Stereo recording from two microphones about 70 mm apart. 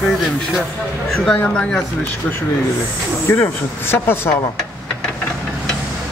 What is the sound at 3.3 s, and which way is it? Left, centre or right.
Speech, left.